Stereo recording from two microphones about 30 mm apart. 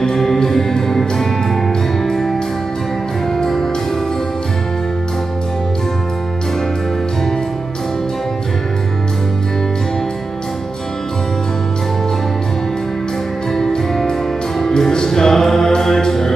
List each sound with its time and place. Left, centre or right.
0.0 s music: centre
3.3 s music: centre
14.6 s music: centre